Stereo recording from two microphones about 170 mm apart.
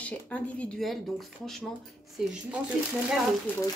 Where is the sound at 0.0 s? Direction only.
10° left (ahead or behind).